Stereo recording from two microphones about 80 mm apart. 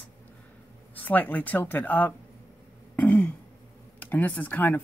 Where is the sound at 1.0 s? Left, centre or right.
Left.